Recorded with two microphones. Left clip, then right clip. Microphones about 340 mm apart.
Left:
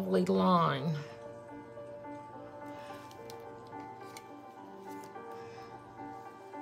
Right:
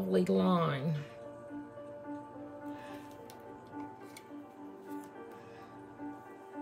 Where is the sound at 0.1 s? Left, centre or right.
Centre.